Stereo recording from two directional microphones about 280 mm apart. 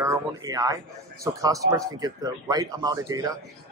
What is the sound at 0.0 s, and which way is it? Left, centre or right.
Speech, centre.